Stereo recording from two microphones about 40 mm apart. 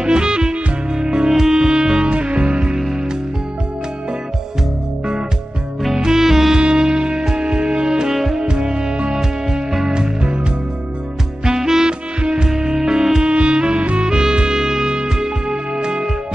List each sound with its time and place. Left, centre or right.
0.0 s music: right
6.1 s music: centre
11.4 s music: centre
13.2 s music: right